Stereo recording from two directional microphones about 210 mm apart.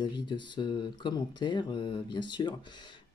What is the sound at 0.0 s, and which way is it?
Speech, 20° left (ahead or behind).